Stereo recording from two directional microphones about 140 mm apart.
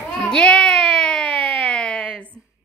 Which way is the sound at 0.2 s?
5° left (ahead or behind).